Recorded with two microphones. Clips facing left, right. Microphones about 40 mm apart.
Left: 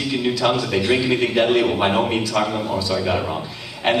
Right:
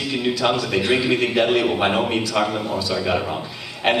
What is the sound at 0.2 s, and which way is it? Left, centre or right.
A man's voice, centre.